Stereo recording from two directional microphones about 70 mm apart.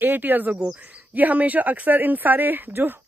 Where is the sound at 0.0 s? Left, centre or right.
Right.